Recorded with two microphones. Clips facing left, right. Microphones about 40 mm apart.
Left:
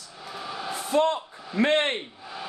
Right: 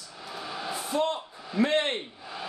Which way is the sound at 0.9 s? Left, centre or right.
Left.